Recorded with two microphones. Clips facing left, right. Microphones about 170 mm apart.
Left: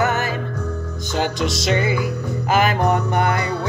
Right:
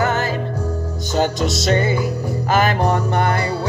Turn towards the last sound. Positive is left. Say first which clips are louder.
# even
turn(degrees=15)  # may be behind; listen again after turning